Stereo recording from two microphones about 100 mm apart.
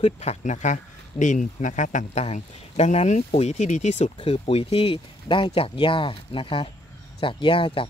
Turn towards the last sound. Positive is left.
turn(degrees=60)  # may be behind; listen again after turning